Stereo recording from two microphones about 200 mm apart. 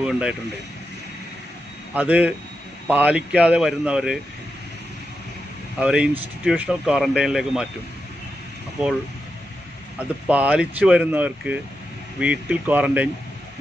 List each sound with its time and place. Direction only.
0.0 s speech: 5° right (ahead or behind)
2.0 s speech: 5° right (ahead or behind)
5.8 s speech: 5° right (ahead or behind)
9.9 s speech: 5° right (ahead or behind)